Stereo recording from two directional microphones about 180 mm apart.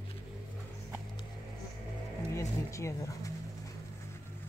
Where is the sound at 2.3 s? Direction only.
15° left (ahead or behind).